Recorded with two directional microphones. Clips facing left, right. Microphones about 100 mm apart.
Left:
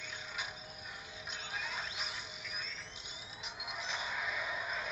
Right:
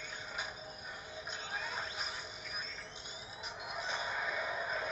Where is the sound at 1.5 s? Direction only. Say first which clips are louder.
Right 1 dB; 40° right (ahead or behind).